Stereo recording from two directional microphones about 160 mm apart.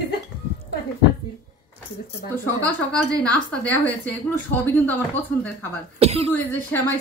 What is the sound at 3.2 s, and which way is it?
A woman's voice, 5° left (ahead or behind).